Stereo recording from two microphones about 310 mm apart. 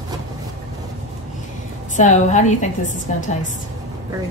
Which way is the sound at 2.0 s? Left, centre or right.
Left.